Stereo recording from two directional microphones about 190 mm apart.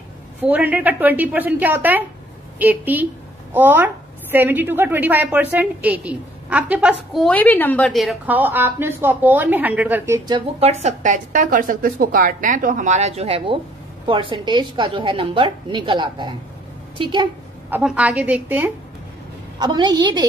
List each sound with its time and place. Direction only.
0.4 s a woman's voice: 10° right (ahead or behind)
7.2 s a woman's voice: 10° left (ahead or behind); by 10.4 s 15° right (ahead or behind)
10.6 s a woman's voice: 35° right (ahead or behind)
17.6 s a woman's voice: 10° right (ahead or behind)
19.6 s a woman's voice: 20° right (ahead or behind)